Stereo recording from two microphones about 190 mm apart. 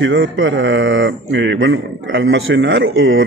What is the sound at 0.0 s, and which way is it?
Speech, 75° right (ahead or behind).